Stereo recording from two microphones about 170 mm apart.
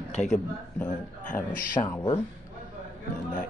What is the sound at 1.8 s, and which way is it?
Speech, 30° left (ahead or behind).